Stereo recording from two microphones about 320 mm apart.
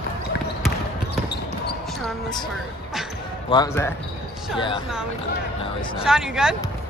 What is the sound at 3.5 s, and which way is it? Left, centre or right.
Speech, centre.